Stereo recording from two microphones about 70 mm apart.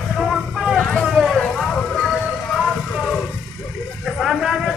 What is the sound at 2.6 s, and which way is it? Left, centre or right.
Vehicle, centre.